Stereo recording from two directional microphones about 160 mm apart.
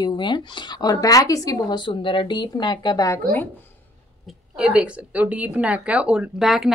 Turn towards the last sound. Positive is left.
turn(degrees=0)  # may be behind; listen again after turning